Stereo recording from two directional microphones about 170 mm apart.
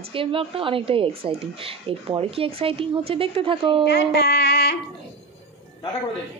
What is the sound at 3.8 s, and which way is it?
Speech, 75° left (ahead or behind).